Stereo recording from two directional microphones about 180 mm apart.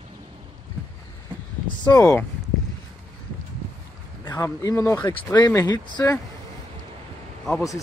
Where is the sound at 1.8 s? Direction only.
20° left (ahead or behind).